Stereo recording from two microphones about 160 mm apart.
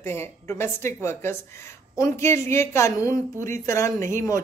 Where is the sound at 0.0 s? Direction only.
15° left (ahead or behind).